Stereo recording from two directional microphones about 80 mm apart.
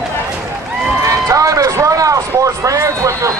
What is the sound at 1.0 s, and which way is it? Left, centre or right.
Speech, right.